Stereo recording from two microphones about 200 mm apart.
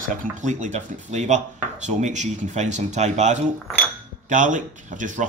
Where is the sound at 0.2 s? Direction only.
40° right (ahead or behind).